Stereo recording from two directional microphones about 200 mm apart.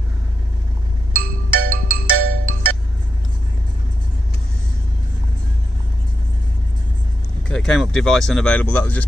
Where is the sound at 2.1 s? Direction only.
90° right.